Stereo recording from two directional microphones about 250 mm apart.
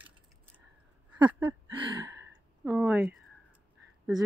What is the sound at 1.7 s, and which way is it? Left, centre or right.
Speech, centre.